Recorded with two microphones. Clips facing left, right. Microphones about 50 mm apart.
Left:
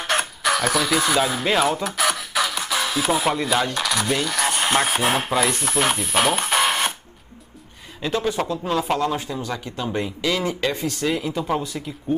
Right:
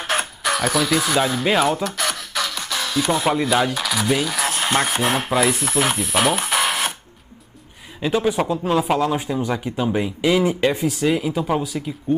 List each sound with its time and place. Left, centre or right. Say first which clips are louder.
0.0 s speech: even; centre
8.0 s speech: right 3 dB; centre
10.2 s speech: right 6 dB; centre